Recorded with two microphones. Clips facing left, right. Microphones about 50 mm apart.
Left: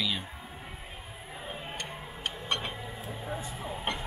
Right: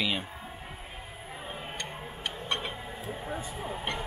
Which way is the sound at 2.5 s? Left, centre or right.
Centre.